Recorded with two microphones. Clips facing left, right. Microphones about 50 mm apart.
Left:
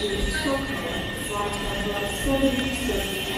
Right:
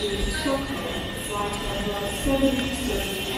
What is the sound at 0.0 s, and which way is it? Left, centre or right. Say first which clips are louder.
Music: left 1 dB; centre.